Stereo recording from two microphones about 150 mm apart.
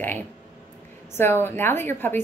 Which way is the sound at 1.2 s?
15° left (ahead or behind).